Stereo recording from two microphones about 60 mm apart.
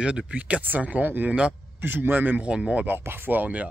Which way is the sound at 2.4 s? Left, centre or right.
Centre.